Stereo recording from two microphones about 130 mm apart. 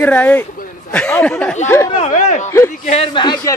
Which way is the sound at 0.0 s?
15° left (ahead or behind).